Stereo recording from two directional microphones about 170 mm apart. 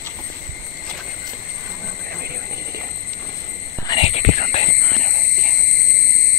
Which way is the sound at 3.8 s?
30° left (ahead or behind).